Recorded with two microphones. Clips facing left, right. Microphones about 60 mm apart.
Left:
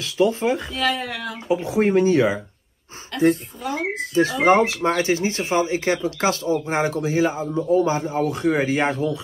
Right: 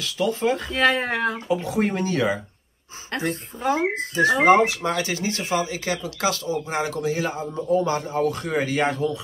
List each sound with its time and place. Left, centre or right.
0.0 s speech: left
0.7 s speech: right
1.5 s speech: left
3.1 s speech: right
4.8 s speech: left